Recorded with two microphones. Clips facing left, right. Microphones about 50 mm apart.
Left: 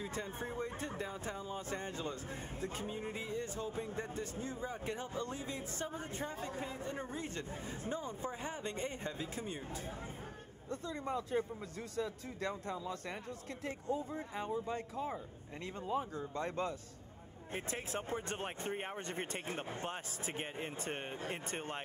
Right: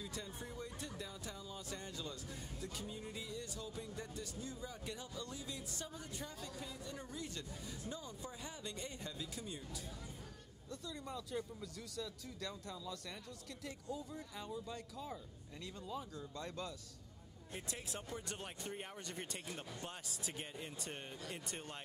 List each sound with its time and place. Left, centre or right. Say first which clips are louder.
0.0 s speech: left 6 dB; left
10.7 s speech: left 8 dB; left